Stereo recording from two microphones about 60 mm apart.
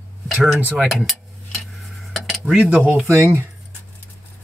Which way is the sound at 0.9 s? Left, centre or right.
Centre.